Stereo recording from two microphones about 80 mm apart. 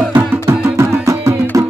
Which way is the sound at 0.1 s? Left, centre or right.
Right.